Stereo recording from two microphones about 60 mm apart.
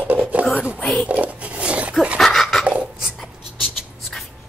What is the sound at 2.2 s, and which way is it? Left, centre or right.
Dog, centre.